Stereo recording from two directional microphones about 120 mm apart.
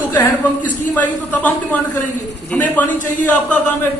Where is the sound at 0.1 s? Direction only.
15° left (ahead or behind).